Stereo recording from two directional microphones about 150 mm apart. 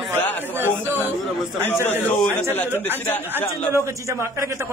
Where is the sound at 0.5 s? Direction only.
15° right (ahead or behind).